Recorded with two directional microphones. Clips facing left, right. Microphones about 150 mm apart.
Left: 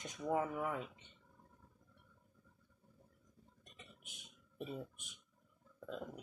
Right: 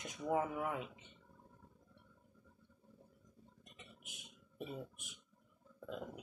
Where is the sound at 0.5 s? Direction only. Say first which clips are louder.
Even; 5° right (ahead or behind).